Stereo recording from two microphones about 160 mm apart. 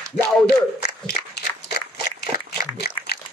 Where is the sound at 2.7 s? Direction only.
80° left.